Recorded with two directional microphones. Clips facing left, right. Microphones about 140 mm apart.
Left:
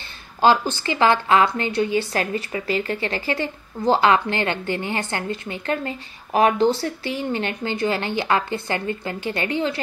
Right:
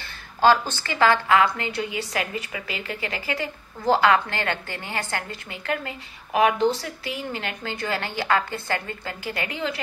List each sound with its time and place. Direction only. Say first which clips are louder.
0.4 s a woman's voice: left 1 dB; 15° left (ahead or behind)